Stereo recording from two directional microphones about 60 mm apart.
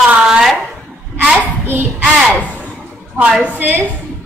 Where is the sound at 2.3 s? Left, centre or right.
Left.